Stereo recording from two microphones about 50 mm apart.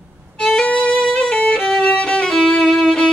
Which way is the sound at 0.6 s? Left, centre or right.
Left.